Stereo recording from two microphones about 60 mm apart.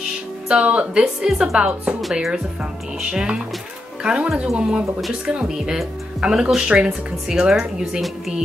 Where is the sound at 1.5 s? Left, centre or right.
Centre.